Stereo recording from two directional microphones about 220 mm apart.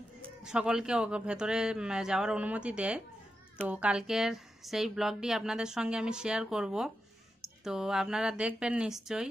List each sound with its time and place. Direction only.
0.5 s speech: 5° right (ahead or behind)